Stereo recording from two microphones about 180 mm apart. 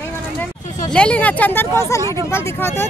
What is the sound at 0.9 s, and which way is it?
Speech, 5° left (ahead or behind).